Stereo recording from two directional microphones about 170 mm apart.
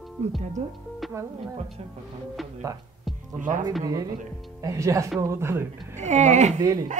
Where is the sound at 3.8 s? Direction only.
20° right (ahead or behind).